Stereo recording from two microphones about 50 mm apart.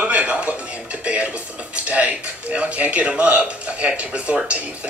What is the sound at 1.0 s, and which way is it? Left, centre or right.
Television, right.